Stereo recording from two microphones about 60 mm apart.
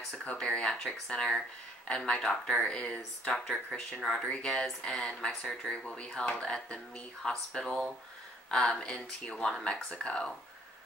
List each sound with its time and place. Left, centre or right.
0.1 s speech: centre